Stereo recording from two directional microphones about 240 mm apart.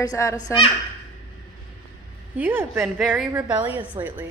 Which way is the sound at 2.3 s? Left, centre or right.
Centre.